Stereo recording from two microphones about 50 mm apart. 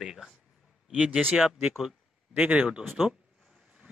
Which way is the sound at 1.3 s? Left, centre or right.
Centre.